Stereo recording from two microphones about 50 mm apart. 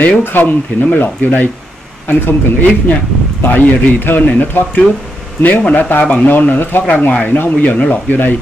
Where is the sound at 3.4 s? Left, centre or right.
Left.